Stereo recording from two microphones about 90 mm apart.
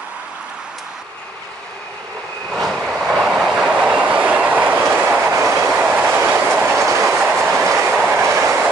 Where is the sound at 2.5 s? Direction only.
Centre (ahead or behind); by 5.4 s 25° right (ahead or behind).